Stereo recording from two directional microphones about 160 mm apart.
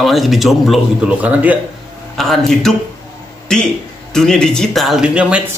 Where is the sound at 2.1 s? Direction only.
Centre (ahead or behind).